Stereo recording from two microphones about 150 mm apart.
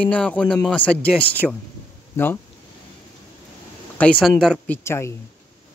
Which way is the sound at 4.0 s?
5° left (ahead or behind).